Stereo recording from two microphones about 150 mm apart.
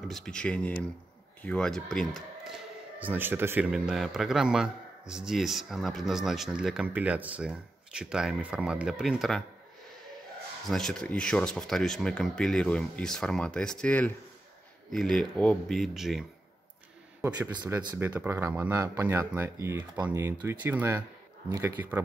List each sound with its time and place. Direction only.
0.1 s speech: 5° left (ahead or behind); by 3.6 s 15° right (ahead or behind)
3.7 s speech: 5° right (ahead or behind)
10.7 s speech: 5° left (ahead or behind)
17.9 s speech: 10° right (ahead or behind)